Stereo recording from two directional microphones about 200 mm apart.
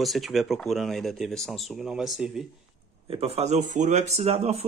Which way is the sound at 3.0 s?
30° right (ahead or behind).